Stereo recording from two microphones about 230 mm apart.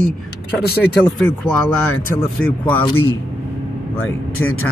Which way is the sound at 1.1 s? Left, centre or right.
Centre.